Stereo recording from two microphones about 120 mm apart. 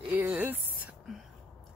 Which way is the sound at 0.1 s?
15° right (ahead or behind).